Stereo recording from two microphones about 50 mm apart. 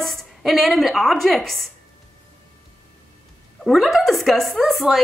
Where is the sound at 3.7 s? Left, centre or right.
Centre.